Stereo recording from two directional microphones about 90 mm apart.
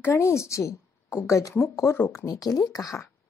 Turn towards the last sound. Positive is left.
turn(degrees=40)  # may be behind; listen again after turning